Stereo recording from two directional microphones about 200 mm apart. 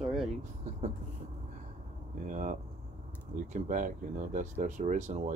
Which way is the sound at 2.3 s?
40° right (ahead or behind).